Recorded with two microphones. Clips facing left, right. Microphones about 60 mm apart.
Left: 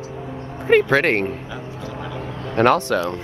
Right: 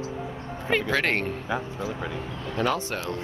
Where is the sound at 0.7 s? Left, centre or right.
Left.